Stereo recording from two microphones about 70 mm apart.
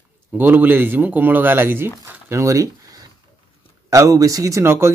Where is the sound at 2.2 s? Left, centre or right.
Right.